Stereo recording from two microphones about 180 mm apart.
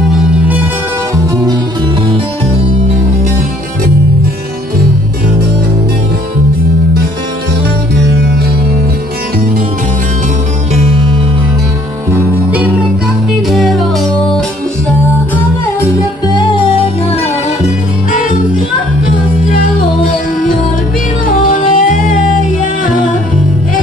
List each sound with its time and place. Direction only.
0.1 s music: 5° right (ahead or behind)
1.2 s music: 20° right (ahead or behind)
12.1 s music: 10° right (ahead or behind)
21.4 s music: 50° left (ahead or behind)